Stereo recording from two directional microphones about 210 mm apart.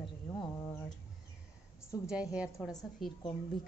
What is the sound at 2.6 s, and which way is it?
Speech, centre (ahead or behind).